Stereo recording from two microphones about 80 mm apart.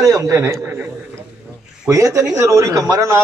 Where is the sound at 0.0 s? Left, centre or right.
Right.